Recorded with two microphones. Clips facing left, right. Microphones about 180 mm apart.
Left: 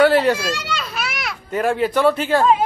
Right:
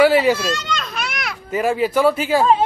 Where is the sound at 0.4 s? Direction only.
10° left (ahead or behind).